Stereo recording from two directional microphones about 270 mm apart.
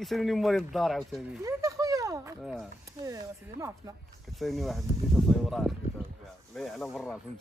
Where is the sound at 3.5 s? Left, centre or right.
Centre.